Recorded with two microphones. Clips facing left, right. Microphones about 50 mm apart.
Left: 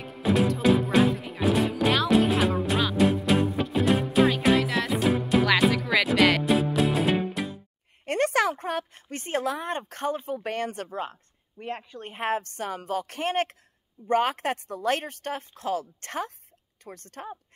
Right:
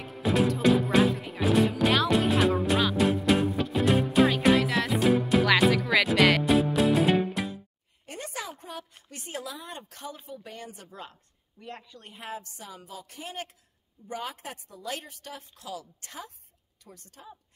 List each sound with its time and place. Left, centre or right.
0.0 s music: centre
8.0 s a sound: left
8.9 s speech: left
10.9 s a woman's voice: left